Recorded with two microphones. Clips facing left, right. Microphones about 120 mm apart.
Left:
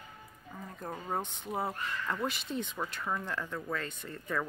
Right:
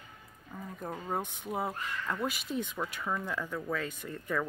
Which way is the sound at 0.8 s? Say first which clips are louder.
Right 1 dB; centre (ahead or behind).